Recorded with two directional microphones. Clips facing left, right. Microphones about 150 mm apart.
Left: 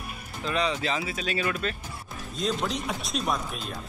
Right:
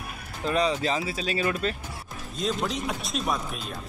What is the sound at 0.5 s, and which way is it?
Speech, 35° right (ahead or behind).